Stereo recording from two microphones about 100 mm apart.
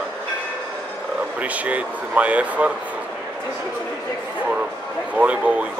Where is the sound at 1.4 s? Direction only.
15° right (ahead or behind).